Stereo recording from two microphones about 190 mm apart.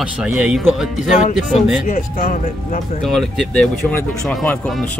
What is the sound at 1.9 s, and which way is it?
Speech, 45° left (ahead or behind).